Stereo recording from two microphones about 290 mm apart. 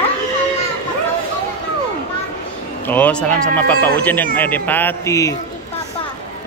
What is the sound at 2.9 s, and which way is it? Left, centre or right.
A man's voice, centre.